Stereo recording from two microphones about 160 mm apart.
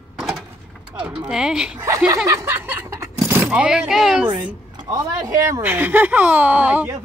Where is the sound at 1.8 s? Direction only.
20° right (ahead or behind).